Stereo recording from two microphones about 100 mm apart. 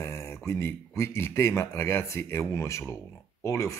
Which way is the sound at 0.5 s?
25° left (ahead or behind).